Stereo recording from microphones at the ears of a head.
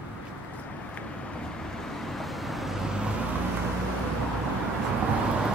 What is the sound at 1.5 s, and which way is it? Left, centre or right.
Vehicle, centre.